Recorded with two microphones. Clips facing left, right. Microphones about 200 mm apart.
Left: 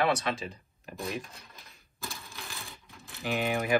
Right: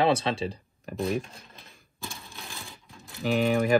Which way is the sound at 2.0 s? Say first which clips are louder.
Right 1 dB; centre (ahead or behind).